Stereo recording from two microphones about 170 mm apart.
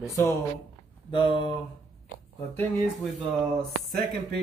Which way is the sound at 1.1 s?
30° left (ahead or behind).